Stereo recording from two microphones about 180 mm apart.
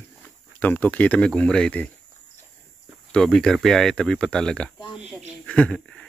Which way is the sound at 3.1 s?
5° left (ahead or behind).